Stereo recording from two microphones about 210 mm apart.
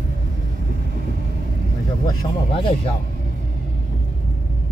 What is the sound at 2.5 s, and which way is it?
Speech, 25° left (ahead or behind).